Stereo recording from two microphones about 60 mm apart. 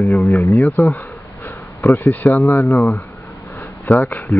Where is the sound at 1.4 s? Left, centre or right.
Left.